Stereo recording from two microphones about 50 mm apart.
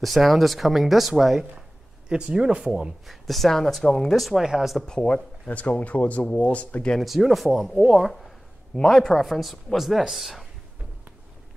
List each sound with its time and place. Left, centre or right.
0.0 s speech: centre
2.0 s speech: centre
3.1 s speech: centre
4.4 s speech: centre
4.8 s speech: centre
7.0 s speech: centre
8.7 s speech: centre